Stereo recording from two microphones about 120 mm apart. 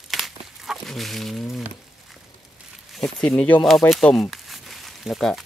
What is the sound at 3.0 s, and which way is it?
Speech, 5° left (ahead or behind).